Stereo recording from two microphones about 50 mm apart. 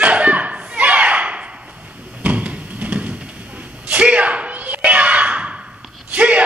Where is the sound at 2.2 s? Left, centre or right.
Right.